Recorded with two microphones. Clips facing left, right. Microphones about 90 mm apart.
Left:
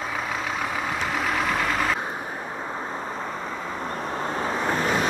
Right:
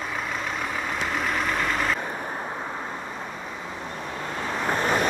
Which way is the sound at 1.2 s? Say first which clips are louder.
Left 2 dB; 45° right (ahead or behind).